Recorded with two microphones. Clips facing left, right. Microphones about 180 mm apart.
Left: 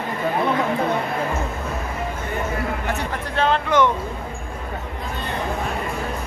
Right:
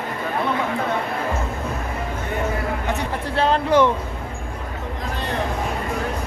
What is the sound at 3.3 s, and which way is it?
Speech, 35° right (ahead or behind).